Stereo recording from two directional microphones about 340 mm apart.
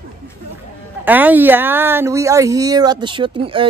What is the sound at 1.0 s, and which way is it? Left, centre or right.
A man's voice, centre.